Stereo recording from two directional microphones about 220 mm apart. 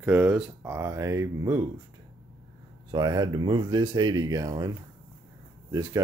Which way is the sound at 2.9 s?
20° right (ahead or behind).